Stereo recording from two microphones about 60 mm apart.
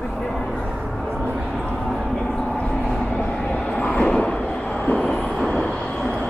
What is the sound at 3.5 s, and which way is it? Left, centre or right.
Vehicle, centre.